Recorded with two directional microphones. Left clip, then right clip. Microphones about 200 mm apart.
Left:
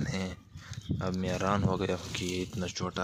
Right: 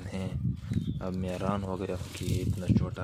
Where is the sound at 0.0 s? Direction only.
Centre (ahead or behind).